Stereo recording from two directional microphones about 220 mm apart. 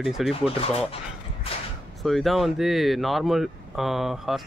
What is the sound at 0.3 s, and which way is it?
Speech, 25° left (ahead or behind).